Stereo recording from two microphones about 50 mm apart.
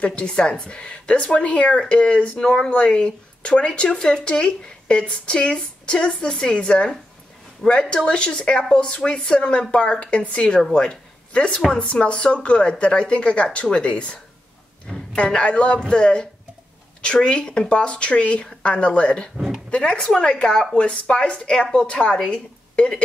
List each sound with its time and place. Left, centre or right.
0.0 s a woman's voice: left